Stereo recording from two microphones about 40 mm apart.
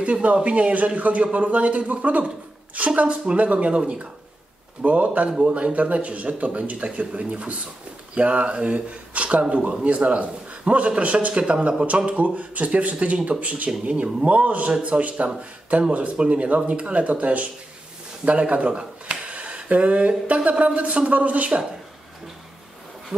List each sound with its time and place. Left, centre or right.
0.0 s speech: right